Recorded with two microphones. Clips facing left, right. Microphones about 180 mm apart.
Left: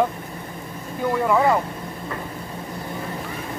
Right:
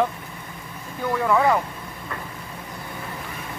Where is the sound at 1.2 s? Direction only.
10° left (ahead or behind).